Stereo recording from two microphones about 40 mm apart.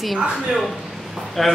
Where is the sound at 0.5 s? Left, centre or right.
Centre.